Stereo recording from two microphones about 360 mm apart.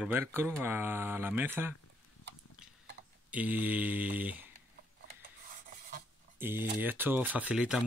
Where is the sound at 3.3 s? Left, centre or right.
Centre.